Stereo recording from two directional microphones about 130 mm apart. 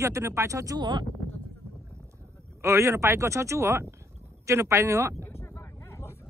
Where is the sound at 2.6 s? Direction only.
20° right (ahead or behind).